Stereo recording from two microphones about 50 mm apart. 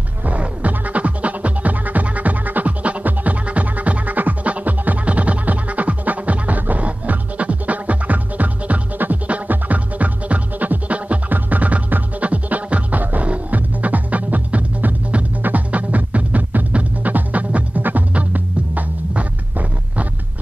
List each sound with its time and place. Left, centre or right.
0.2 s music: right